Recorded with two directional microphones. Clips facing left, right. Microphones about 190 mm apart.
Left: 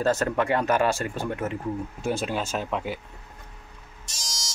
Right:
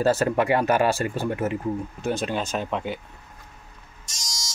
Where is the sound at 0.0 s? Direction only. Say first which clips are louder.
Right 3 dB; 10° right (ahead or behind).